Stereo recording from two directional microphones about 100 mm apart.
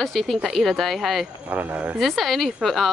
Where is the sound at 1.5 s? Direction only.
15° right (ahead or behind).